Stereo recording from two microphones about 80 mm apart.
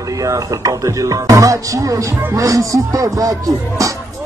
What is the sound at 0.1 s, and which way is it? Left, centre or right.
Speech, right.